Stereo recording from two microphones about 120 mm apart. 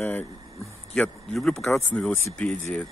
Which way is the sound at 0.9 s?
5° left (ahead or behind).